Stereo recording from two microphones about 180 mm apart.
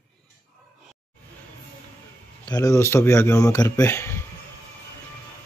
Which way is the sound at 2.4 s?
20° left (ahead or behind).